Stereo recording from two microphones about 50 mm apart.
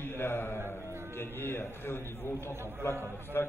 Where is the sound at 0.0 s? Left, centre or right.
Left.